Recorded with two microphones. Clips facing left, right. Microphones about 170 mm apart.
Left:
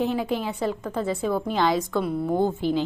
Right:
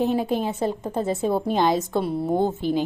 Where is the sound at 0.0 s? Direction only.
20° right (ahead or behind).